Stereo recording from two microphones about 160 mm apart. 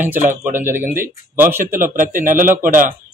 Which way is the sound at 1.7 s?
60° right (ahead or behind).